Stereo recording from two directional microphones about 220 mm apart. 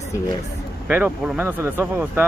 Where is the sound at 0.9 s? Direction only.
10° right (ahead or behind).